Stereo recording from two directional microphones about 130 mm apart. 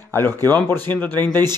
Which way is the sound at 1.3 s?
30° right (ahead or behind).